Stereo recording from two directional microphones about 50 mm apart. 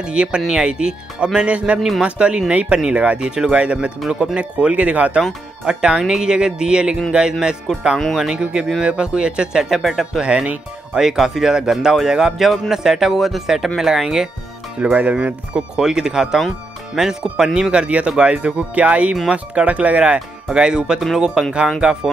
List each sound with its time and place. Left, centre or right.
0.0 s speech: centre
1.8 s speech: centre
10.2 s speech: right
10.9 s speech: centre
14.9 s speech: right
15.5 s speech: centre
21.8 s speech: right